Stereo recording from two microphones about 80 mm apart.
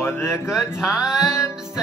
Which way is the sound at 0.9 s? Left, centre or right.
Centre.